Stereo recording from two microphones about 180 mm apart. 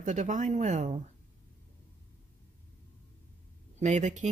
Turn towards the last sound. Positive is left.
turn(degrees=-40)  # may be behind; listen again after turning